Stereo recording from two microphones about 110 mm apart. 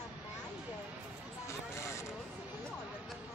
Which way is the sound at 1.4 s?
25° left (ahead or behind).